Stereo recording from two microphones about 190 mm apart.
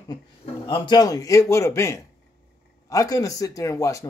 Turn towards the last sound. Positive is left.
turn(degrees=15)  # may be behind; listen again after turning